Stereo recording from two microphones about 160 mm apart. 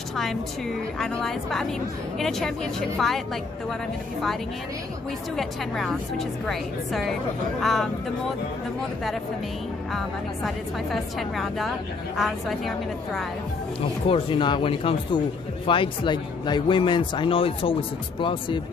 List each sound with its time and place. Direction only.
0.1 s a woman's voice: centre (ahead or behind)
5.3 s a woman's voice: centre (ahead or behind)
9.9 s a woman's voice: centre (ahead or behind)
13.7 s speech: 35° left (ahead or behind)